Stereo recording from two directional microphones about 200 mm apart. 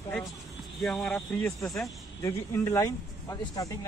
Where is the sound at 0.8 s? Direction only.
5° left (ahead or behind).